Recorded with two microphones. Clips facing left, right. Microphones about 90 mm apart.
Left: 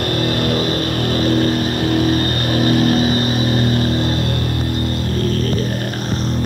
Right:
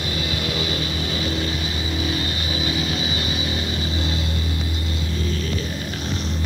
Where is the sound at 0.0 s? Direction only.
50° left (ahead or behind).